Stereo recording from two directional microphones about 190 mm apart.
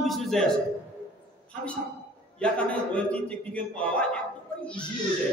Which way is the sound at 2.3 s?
5° left (ahead or behind).